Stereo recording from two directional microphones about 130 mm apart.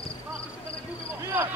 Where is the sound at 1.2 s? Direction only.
20° right (ahead or behind).